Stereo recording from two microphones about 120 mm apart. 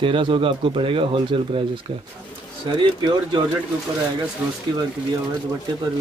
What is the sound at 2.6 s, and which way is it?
Speech, 40° right (ahead or behind).